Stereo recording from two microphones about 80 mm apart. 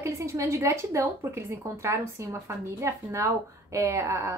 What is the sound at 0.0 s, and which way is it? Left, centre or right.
A woman's voice, right.